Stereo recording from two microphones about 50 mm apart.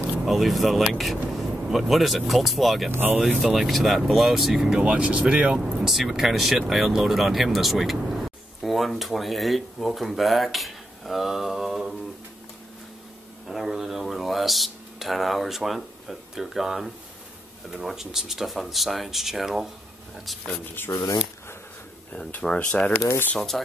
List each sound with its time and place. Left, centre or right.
0.2 s speech: centre
2.9 s speech: right
3.3 s speech: centre; by 5.6 s right
5.6 s speech: centre
13.5 s speech: centre
20.8 s speech: left
22.4 s speech: centre
22.9 s speech: left
23.5 s speech: centre